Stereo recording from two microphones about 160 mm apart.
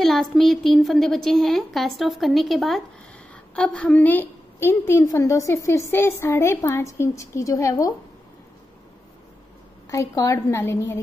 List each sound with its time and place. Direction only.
0.0 s a woman's voice: centre (ahead or behind); by 7.9 s 20° left (ahead or behind)
9.8 s a woman's voice: 20° left (ahead or behind)